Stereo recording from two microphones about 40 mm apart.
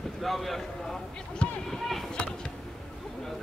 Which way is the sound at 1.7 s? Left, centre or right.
Centre.